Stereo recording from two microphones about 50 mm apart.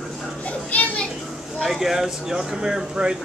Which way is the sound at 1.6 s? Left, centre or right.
Centre.